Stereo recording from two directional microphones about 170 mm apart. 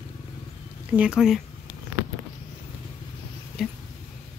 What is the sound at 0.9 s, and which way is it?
Speech, 5° right (ahead or behind).